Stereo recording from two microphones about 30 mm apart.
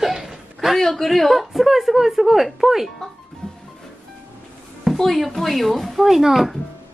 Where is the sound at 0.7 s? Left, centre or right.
Centre.